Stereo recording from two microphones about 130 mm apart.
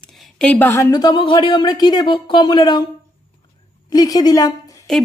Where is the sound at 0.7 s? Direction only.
25° left (ahead or behind).